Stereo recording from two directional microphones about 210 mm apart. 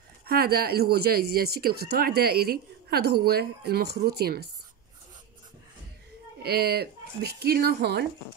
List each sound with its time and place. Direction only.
0.3 s speech: 45° right (ahead or behind)
6.4 s speech: 50° right (ahead or behind)